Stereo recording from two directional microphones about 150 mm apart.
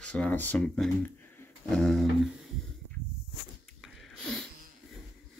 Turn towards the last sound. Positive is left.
turn(degrees=0)  # may be behind; listen again after turning